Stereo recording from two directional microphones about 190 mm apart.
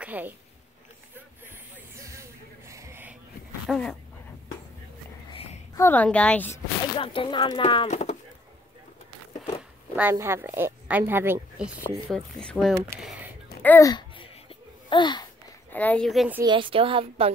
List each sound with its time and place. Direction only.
0.0 s a woman's voice: 10° right (ahead or behind)
2.0 s music: 15° right (ahead or behind)
3.6 s speech: centre (ahead or behind)
5.3 s a sound: 30° left (ahead or behind)
5.8 s a woman's voice: 10° left (ahead or behind)
7.0 s speech: 25° left (ahead or behind)
7.9 s speech: 35° left (ahead or behind)
9.9 s a woman's voice: 10° right (ahead or behind)
12.1 s speech: centre (ahead or behind)
13.6 s a sound: 15° left (ahead or behind)
15.7 s speech: 10° left (ahead or behind)
16.4 s a woman's voice: 25° right (ahead or behind)